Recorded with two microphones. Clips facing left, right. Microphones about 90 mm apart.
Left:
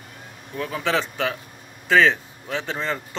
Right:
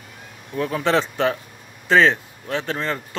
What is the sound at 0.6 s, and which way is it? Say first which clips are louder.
Speech: right 4 dB; centre (ahead or behind).